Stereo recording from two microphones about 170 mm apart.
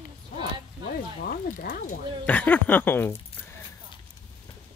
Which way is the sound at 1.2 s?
60° left (ahead or behind).